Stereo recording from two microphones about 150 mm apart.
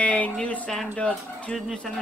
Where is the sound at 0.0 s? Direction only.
10° left (ahead or behind).